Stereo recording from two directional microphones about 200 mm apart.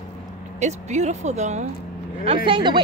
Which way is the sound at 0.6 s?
35° right (ahead or behind).